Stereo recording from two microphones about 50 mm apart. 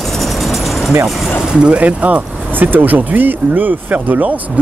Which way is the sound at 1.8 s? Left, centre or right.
Right.